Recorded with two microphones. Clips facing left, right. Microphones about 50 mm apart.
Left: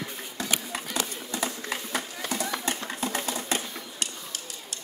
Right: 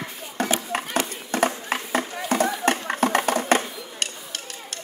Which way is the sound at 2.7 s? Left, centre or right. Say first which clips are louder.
Right 9 dB; right.